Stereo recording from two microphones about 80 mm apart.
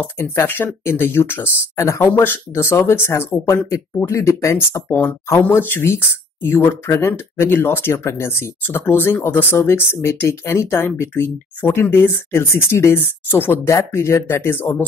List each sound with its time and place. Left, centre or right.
0.2 s speech: left